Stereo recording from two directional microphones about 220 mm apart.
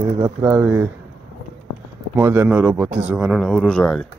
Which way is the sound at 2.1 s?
10° right (ahead or behind).